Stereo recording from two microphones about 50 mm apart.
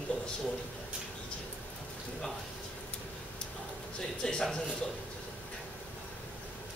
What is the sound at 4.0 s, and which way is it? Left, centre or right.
Speech, centre.